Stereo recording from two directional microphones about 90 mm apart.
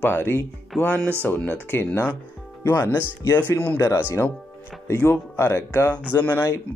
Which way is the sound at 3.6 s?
20° left (ahead or behind).